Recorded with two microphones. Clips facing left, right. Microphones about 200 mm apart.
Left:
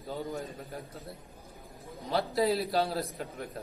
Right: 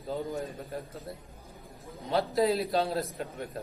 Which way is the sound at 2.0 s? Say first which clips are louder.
Right 2 dB; centre (ahead or behind).